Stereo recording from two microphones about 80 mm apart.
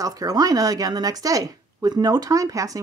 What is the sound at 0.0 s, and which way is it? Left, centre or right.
Speech, right.